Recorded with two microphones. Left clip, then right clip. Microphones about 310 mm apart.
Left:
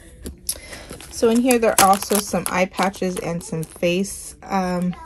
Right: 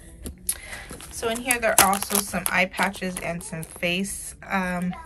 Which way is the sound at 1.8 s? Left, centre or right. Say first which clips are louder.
Left 5 dB; centre.